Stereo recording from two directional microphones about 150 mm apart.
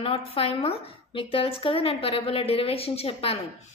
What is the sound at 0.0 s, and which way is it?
A woman's voice, 40° left (ahead or behind).